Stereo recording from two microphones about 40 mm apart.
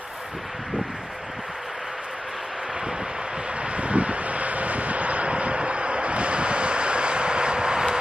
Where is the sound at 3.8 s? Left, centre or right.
Right.